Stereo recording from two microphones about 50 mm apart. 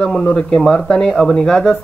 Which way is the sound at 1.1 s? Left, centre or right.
Centre.